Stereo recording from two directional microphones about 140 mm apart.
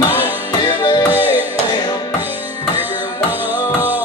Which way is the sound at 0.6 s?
30° left (ahead or behind).